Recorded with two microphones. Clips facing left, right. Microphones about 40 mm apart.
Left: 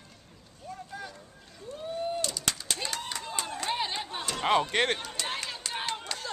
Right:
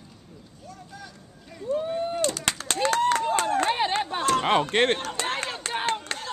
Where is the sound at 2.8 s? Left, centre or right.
Right.